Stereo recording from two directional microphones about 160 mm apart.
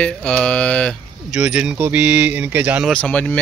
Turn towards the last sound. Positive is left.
turn(degrees=10)  # may be behind; listen again after turning